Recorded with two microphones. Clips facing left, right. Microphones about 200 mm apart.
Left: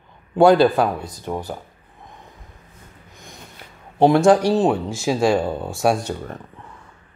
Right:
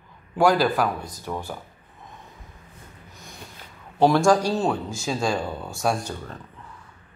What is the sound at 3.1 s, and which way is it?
Snort, 20° left (ahead or behind).